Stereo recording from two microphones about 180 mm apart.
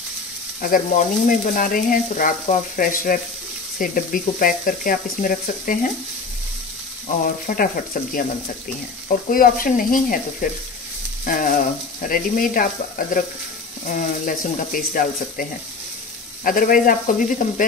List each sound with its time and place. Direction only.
0.6 s sizzle: 50° left (ahead or behind)
7.1 s sizzle: 50° left (ahead or behind)
9.3 s sizzle: 50° left (ahead or behind)
16.4 s sizzle: 50° left (ahead or behind)